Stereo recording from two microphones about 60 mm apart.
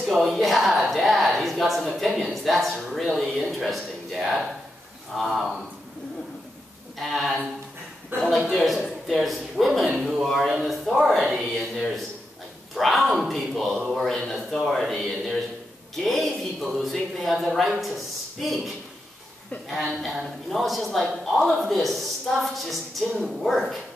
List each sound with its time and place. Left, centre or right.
0.0 s a sound: centre
2.2 s speech: centre
7.0 s speech: centre
8.1 s speech: right
8.5 s speech: centre
20.0 s speech: centre